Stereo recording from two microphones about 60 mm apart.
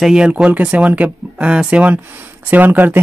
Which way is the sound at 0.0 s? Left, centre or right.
Centre.